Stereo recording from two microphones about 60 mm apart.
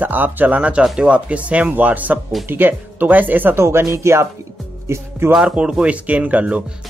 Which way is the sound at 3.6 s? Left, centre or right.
Right.